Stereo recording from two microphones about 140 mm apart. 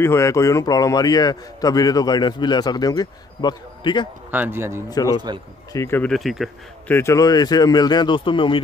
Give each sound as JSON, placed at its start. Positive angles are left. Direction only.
{"t": 0.0, "sound": "a man's voice", "side_deg": 20}
{"t": 4.3, "sound": "speech", "side_deg": -15}
{"t": 4.8, "sound": "a man's voice", "side_deg": 25}
{"t": 6.0, "sound": "speech", "side_deg": 0}
{"t": 6.9, "sound": "a man's voice", "side_deg": 20}